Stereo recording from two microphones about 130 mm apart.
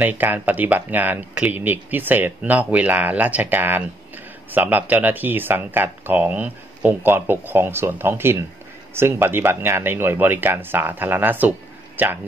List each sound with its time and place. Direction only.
0.0 s speech: 15° right (ahead or behind)